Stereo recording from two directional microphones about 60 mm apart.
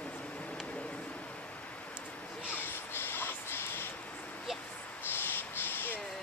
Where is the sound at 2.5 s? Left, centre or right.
Left.